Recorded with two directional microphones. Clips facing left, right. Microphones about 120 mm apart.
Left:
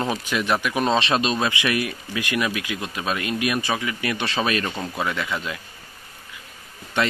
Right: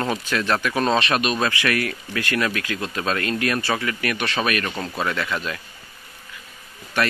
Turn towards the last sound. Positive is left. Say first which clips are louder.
# even
turn(degrees=25)  # may be behind; listen again after turning